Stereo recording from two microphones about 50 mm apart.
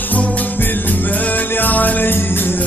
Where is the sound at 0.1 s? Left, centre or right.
Left.